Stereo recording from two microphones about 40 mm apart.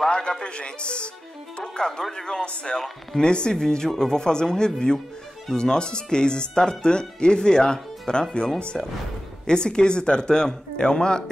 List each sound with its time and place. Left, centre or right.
0.4 s speech: left